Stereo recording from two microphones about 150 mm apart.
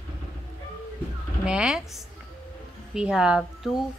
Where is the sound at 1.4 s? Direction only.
5° right (ahead or behind).